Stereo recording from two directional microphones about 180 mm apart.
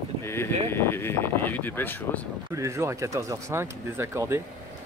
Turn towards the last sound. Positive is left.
turn(degrees=-15)  # may be behind; listen again after turning